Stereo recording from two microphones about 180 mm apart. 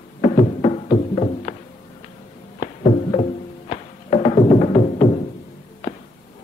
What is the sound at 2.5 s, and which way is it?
Music, 40° left (ahead or behind).